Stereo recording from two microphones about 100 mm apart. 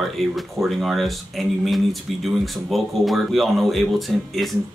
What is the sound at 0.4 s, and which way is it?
Speech, centre (ahead or behind).